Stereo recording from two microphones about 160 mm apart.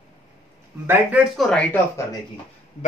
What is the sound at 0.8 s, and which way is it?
Speech, 10° right (ahead or behind).